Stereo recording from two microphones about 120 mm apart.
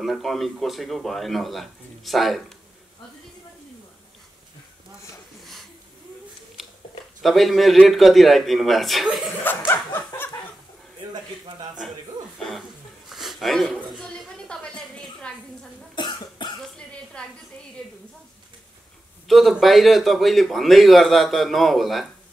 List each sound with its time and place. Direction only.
0.0 s a man's voice: centre (ahead or behind)
7.2 s a man's voice: centre (ahead or behind)
9.7 s dog: 20° left (ahead or behind)
11.4 s a man's voice: 35° right (ahead or behind)
12.4 s speech: centre (ahead or behind)
14.5 s a sound: 5° left (ahead or behind)
16.0 s cough: 40° left (ahead or behind)
16.6 s cough: 10° left (ahead or behind)
19.2 s a man's voice: centre (ahead or behind)